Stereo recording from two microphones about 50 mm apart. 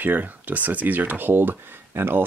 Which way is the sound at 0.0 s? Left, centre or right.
Right.